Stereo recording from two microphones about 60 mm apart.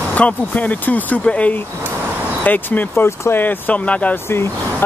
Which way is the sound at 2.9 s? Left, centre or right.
Left.